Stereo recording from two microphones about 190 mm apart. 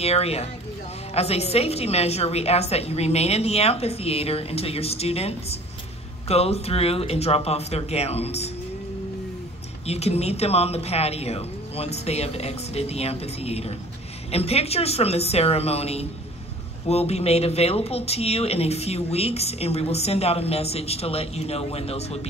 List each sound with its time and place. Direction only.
0.0 s speech: 35° left (ahead or behind)
9.8 s speech: 35° left (ahead or behind)